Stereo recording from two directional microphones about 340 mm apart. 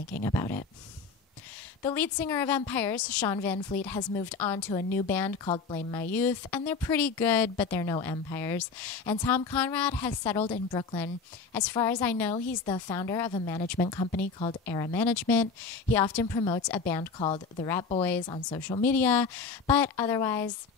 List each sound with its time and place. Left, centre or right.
0.2 s speech: centre
1.8 s a woman's voice: centre
14.2 s speech: left
14.7 s a woman's voice: centre